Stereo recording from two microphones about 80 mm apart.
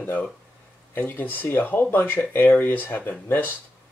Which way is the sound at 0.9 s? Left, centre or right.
Left.